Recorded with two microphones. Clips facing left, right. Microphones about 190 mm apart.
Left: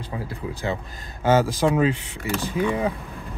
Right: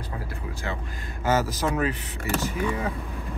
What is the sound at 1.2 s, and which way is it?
Speech, 30° left (ahead or behind).